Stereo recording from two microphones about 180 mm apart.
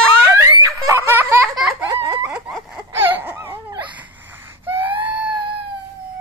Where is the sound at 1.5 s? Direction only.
5° right (ahead or behind).